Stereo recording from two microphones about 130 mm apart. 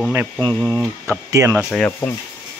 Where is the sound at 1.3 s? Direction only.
20° right (ahead or behind).